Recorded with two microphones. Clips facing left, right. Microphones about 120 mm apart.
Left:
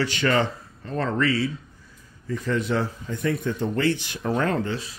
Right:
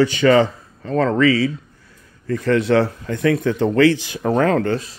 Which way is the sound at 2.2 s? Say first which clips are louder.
Right 8 dB; 75° right (ahead or behind).